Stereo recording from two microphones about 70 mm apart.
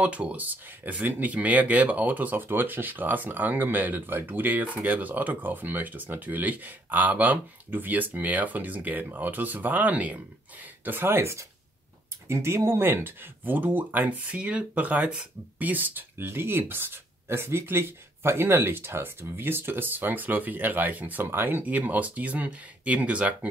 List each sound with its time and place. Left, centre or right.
0.0 s speech: centre